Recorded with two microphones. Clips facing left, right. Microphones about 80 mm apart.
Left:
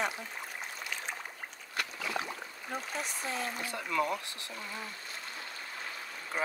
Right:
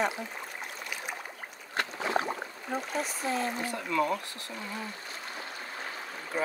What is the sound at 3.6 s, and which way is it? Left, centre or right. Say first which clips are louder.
Speech: right 1 dB; right.